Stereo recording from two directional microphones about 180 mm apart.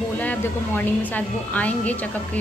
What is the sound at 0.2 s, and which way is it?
A woman's voice, 10° left (ahead or behind).